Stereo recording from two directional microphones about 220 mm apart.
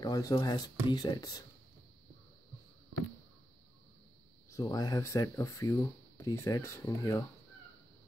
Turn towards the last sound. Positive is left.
turn(degrees=15)  # may be behind; listen again after turning